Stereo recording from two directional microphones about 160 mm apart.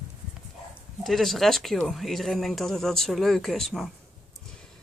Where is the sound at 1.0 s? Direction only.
Centre (ahead or behind).